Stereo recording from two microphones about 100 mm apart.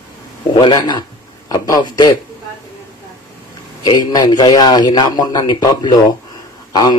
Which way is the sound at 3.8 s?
45° left (ahead or behind).